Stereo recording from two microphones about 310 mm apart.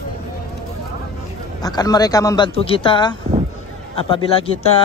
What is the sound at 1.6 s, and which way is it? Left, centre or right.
A man's voice, centre.